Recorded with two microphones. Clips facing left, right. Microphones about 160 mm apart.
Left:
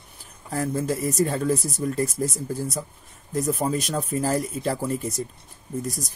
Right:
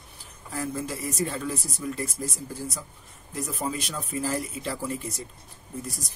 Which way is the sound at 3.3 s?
40° left (ahead or behind).